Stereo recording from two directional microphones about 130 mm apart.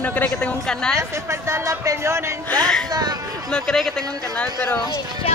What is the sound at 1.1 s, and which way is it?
Speech, 20° right (ahead or behind).